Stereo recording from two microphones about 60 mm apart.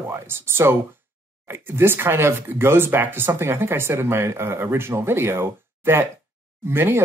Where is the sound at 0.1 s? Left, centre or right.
Right.